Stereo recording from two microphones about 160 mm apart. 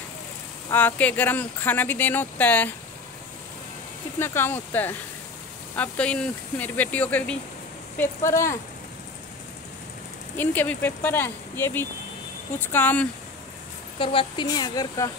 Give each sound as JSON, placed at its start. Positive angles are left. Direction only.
{"t": 0.7, "sound": "speech", "side_deg": 10}
{"t": 4.2, "sound": "speech", "side_deg": 15}
{"t": 10.3, "sound": "speech", "side_deg": 10}
{"t": 13.9, "sound": "speech", "side_deg": 30}